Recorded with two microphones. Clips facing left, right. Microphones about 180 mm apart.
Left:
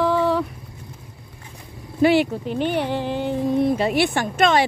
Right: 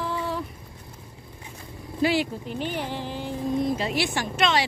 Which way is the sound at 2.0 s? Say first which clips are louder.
Left 7 dB; 60° left (ahead or behind).